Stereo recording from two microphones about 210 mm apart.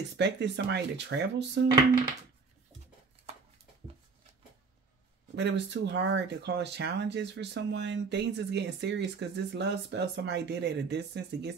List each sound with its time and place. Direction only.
0.2 s speech: 55° right (ahead or behind)
5.3 s speech: 55° right (ahead or behind)